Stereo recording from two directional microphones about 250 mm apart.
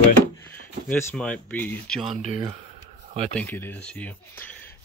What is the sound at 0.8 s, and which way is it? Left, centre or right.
Speech, centre.